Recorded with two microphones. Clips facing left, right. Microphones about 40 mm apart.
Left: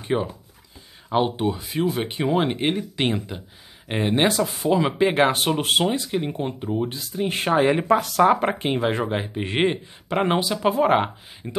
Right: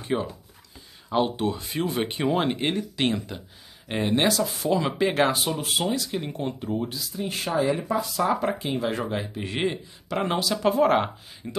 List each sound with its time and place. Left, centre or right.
0.0 s speech: centre
5.3 s speech: left
5.9 s speech: left
6.9 s speech: left
7.5 s speech: left
8.3 s speech: left
10.5 s speech: centre